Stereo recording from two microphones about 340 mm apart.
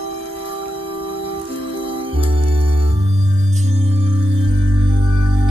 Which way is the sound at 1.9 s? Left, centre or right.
Centre.